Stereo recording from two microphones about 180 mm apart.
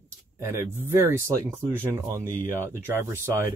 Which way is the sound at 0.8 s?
15° right (ahead or behind).